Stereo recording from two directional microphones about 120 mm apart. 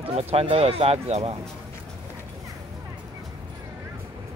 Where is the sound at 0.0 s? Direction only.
55° right (ahead or behind).